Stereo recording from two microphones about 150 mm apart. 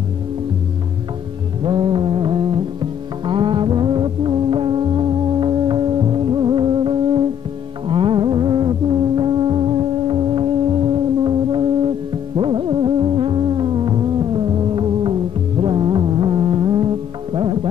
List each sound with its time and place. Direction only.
1.6 s music: 35° right (ahead or behind)